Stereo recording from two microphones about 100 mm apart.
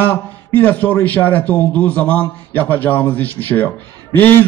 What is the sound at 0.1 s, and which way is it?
A man's voice, 15° left (ahead or behind).